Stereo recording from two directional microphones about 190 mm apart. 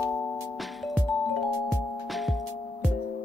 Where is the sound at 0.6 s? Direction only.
Centre (ahead or behind).